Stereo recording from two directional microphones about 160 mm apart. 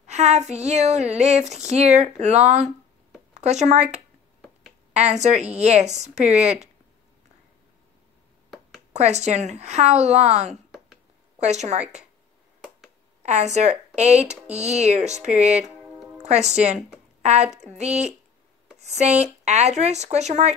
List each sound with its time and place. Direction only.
0.0 s speech: 45° right (ahead or behind)
5.1 s speech: 45° right (ahead or behind)
8.9 s speech: 45° right (ahead or behind)
10.5 s a sound: 5° right (ahead or behind)
11.3 s a woman's voice: 45° right (ahead or behind)
13.2 s a woman's voice: 45° right (ahead or behind)